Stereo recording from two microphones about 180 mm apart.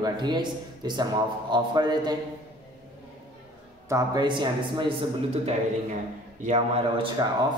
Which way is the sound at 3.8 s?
20° right (ahead or behind).